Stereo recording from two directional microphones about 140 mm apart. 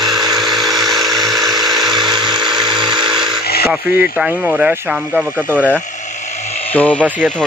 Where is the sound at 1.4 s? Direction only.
30° right (ahead or behind).